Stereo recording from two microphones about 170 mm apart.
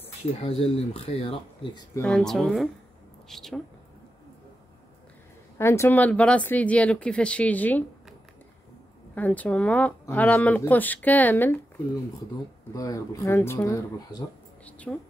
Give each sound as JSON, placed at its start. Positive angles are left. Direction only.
{"t": 0.4, "sound": "speech", "side_deg": 35}
{"t": 2.0, "sound": "speech", "side_deg": 0}
{"t": 5.6, "sound": "speech", "side_deg": 15}
{"t": 9.1, "sound": "speech", "side_deg": 10}
{"t": 12.7, "sound": "speech", "side_deg": 20}
{"t": 14.6, "sound": "speech", "side_deg": 5}